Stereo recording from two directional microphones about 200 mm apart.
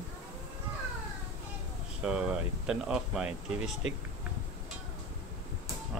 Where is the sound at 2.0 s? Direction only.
5° right (ahead or behind).